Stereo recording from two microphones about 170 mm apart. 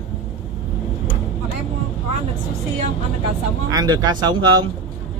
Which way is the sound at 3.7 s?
25° right (ahead or behind).